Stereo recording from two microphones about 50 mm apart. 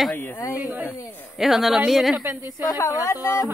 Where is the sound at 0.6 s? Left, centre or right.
Right.